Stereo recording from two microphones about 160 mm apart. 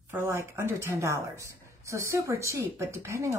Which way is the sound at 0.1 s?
15° right (ahead or behind).